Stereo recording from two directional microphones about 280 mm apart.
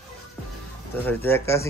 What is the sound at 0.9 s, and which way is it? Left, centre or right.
Speech, centre.